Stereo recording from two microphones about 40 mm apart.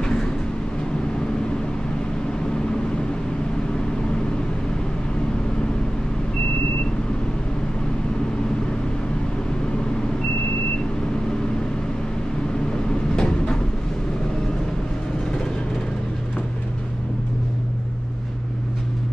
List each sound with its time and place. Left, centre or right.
13.1 s train: centre